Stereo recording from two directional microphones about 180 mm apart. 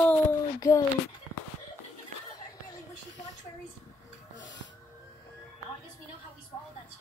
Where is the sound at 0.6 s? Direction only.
20° left (ahead or behind).